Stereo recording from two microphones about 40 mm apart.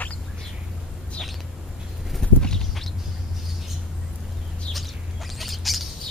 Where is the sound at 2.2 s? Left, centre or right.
Centre.